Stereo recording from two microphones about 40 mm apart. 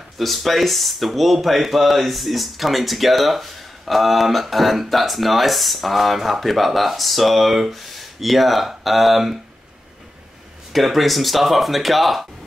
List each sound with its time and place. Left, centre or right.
0.2 s speech: centre
10.7 s speech: centre